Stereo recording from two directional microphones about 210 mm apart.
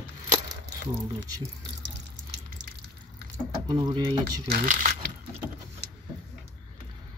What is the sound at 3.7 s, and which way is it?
Speech, 20° right (ahead or behind).